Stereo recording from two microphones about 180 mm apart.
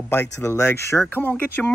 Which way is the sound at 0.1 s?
10° left (ahead or behind).